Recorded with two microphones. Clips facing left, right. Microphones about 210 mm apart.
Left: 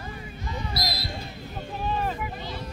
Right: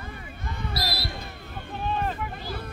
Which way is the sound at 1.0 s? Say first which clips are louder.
Even; 60° right (ahead or behind).